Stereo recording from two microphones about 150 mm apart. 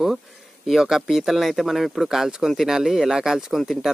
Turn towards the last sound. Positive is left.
turn(degrees=0)  # may be behind; listen again after turning